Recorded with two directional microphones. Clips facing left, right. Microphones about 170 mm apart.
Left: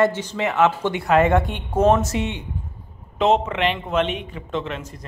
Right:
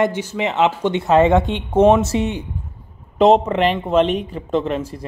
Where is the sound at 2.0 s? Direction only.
35° right (ahead or behind).